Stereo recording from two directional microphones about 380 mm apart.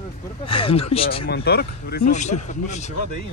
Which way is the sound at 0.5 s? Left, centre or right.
Centre.